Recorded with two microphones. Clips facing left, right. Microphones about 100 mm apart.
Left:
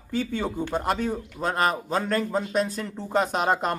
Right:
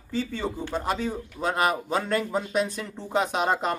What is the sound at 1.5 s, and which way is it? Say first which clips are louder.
Speech: even; 10° right (ahead or behind).